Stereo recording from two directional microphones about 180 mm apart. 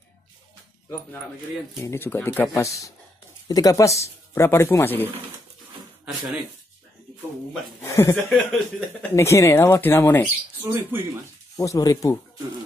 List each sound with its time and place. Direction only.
1.8 s speech: 15° left (ahead or behind)
6.0 s speech: 5° right (ahead or behind)
7.8 s speech: 15° left (ahead or behind)
10.6 s speech: 10° right (ahead or behind)
11.5 s speech: 20° left (ahead or behind)